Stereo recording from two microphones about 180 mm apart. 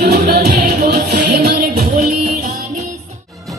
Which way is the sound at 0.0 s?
60° right (ahead or behind).